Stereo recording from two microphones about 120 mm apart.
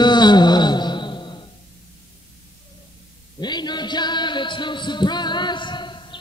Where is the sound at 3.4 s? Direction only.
35° left (ahead or behind).